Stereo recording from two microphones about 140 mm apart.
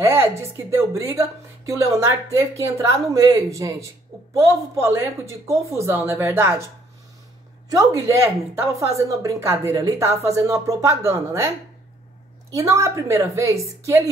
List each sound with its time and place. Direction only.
0.0 s speech: 20° right (ahead or behind)
7.7 s speech: 25° right (ahead or behind)
12.5 s speech: 20° right (ahead or behind)